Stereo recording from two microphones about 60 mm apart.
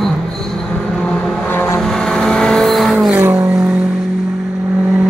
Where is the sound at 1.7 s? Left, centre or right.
Centre.